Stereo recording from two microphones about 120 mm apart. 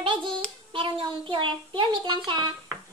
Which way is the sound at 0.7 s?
45° right (ahead or behind).